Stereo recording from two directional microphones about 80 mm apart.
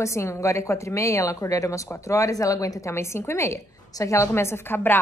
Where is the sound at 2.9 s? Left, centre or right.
Left.